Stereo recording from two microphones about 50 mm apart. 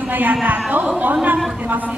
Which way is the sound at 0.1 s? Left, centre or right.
Right.